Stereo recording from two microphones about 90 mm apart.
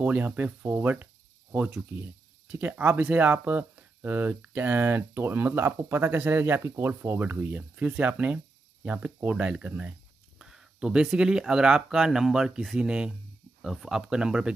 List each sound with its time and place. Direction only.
0.0 s speech: 15° right (ahead or behind)
2.4 s speech: 20° right (ahead or behind)